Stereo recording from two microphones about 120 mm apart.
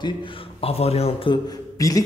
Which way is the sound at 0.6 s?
55° left (ahead or behind).